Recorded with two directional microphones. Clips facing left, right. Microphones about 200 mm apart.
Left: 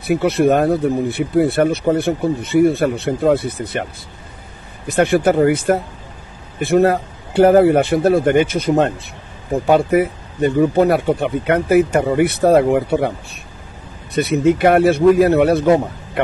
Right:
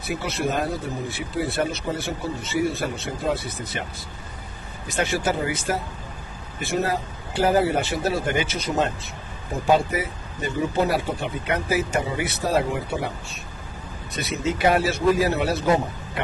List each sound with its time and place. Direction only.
0.0 s speech: 60° left (ahead or behind)
4.8 s speech: 60° left (ahead or behind)